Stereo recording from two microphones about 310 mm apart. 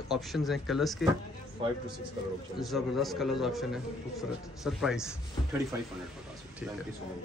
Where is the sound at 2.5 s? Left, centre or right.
Centre.